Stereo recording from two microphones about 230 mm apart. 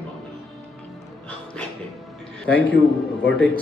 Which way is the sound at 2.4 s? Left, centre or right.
Centre.